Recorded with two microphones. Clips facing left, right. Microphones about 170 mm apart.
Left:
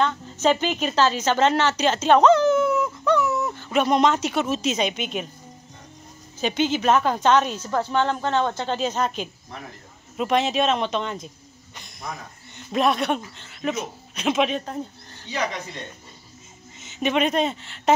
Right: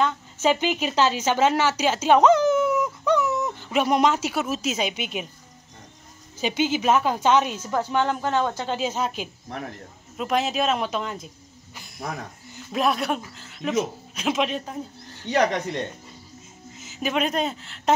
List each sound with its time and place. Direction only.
0.0 s a woman's voice: 10° right (ahead or behind)
6.4 s a woman's voice: 10° right (ahead or behind)
12.5 s speech: centre (ahead or behind)
15.2 s speech: 65° right (ahead or behind)
16.8 s speech: centre (ahead or behind)